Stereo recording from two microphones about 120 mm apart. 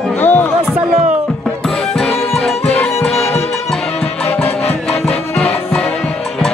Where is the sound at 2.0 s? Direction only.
Centre (ahead or behind).